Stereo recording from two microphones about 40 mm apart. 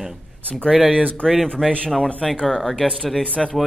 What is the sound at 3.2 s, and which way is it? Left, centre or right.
Speech, left.